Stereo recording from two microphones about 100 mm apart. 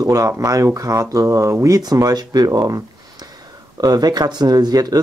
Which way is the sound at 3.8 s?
40° right (ahead or behind).